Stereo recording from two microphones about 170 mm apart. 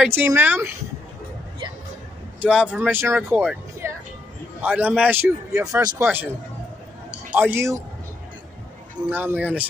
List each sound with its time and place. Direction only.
0.0 s a man's voice: 10° right (ahead or behind)
2.4 s a man's voice: 5° right (ahead or behind)
3.8 s music: 15° right (ahead or behind)
4.6 s a man's voice: 10° right (ahead or behind)
7.1 s a sound: 10° right (ahead or behind)
9.1 s a man's voice: 10° right (ahead or behind)